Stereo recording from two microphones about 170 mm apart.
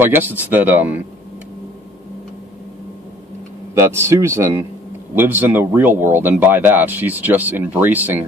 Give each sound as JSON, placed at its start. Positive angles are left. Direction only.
{"t": 0.0, "sound": "speech", "side_deg": -10}
{"t": 3.8, "sound": "speech", "side_deg": -15}